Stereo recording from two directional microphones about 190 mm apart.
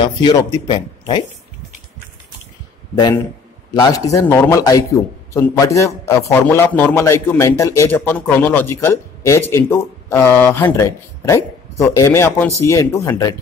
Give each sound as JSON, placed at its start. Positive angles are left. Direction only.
{"t": 0.0, "sound": "speech", "side_deg": 25}
{"t": 3.8, "sound": "a man's voice", "side_deg": 20}